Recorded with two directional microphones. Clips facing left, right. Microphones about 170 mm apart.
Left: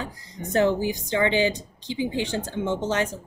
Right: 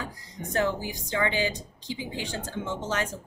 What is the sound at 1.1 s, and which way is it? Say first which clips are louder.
Speech: left 5 dB; 25° left (ahead or behind).